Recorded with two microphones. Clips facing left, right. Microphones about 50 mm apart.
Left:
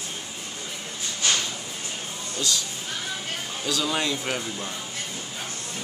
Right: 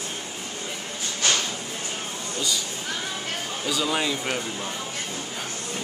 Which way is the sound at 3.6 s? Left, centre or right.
Centre.